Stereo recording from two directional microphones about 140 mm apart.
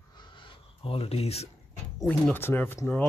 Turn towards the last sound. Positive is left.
turn(degrees=15)  # may be behind; listen again after turning